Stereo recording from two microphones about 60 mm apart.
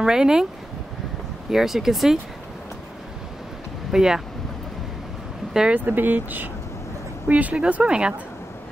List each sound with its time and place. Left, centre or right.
0.0 s speech: centre
1.5 s speech: centre
3.9 s speech: centre
5.5 s speech: centre
5.9 s speech: right; by 8.1 s centre